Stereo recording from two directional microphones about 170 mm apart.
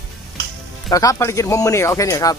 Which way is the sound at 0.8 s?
20° left (ahead or behind).